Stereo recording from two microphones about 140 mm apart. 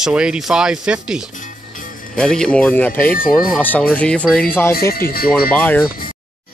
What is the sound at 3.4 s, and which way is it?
Speech, centre (ahead or behind).